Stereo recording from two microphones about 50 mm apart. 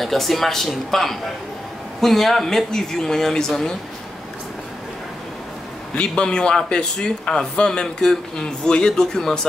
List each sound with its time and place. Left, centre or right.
0.0 s a man's voice: centre
5.9 s a man's voice: centre